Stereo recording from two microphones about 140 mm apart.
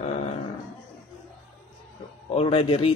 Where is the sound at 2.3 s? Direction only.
40° left (ahead or behind).